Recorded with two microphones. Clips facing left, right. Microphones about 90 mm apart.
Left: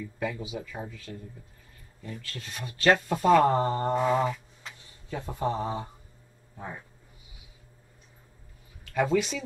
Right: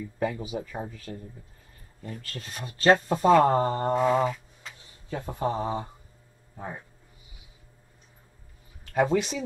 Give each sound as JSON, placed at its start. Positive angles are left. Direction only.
{"t": 0.2, "sound": "speech", "side_deg": -40}
{"t": 3.5, "sound": "mantra", "side_deg": -10}
{"t": 5.1, "sound": "speech", "side_deg": -10}
{"t": 6.5, "sound": "speech", "side_deg": -25}
{"t": 8.9, "sound": "speech", "side_deg": -35}